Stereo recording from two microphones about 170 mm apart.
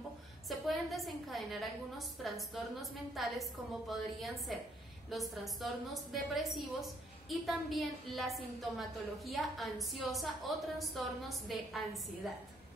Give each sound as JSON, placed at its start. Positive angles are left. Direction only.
{"t": 0.5, "sound": "a woman's voice", "side_deg": 0}